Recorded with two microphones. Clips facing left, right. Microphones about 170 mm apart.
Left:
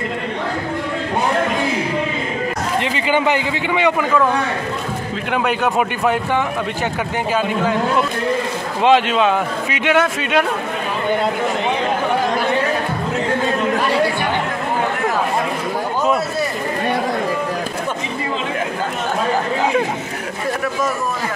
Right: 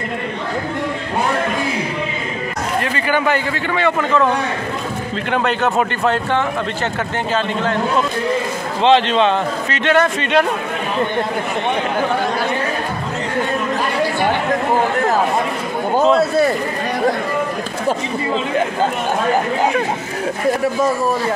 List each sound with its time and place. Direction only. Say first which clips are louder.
2.8 s a man's voice: even; 20° left (ahead or behind)
5.3 s speech: right 1 dB; 10° left (ahead or behind)
8.8 s a man's voice: right 1 dB; 5° left (ahead or behind)